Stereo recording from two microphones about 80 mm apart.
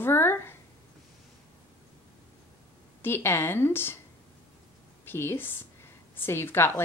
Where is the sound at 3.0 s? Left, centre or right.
Left.